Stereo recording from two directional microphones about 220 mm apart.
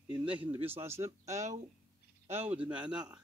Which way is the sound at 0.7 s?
10° right (ahead or behind).